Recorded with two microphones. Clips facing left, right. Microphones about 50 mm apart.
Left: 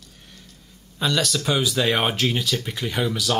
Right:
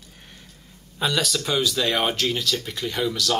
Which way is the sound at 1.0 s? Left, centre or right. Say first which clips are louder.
Left 1 dB; centre.